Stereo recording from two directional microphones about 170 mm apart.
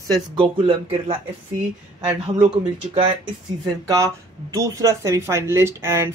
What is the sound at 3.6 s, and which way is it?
Speech, 20° right (ahead or behind).